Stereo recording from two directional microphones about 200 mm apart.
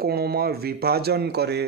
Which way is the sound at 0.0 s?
50° right (ahead or behind).